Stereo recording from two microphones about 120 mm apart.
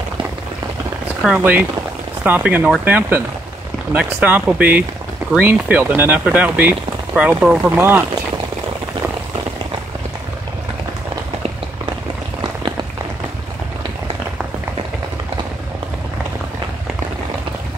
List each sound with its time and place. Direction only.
1.4 s speech: 15° right (ahead or behind)